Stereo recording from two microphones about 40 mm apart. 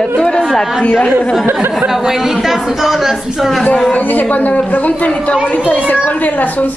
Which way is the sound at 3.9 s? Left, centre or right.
Left.